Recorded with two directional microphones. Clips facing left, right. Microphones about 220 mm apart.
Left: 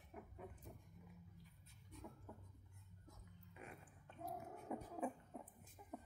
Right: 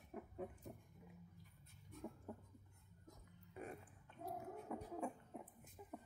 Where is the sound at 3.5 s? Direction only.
40° right (ahead or behind).